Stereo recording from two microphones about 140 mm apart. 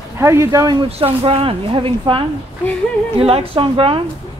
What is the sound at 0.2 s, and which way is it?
Speech, 20° right (ahead or behind).